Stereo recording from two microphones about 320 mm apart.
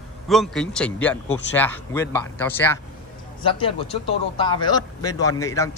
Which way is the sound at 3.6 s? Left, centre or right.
Centre.